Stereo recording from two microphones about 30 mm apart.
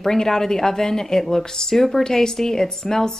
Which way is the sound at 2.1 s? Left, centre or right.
Centre.